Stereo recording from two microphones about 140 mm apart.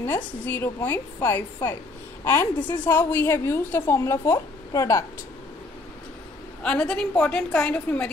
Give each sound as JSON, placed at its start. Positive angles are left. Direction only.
{"t": 0.0, "sound": "a woman's voice", "side_deg": 15}
{"t": 6.6, "sound": "a woman's voice", "side_deg": 5}